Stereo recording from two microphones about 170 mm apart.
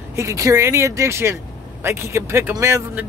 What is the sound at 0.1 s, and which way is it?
Speech, 15° right (ahead or behind).